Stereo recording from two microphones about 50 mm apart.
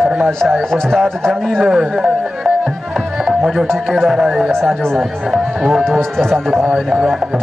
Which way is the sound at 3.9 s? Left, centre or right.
Centre.